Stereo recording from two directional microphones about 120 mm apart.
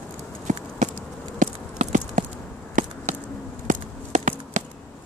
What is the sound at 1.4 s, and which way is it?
Clip-clop, 90° right.